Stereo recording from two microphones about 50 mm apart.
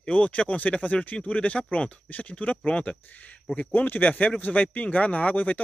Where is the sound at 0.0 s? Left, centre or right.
Left.